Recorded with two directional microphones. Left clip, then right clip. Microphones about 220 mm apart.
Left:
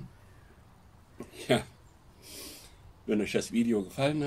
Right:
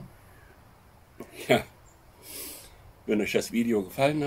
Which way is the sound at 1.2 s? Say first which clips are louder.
Right 4 dB; centre (ahead or behind).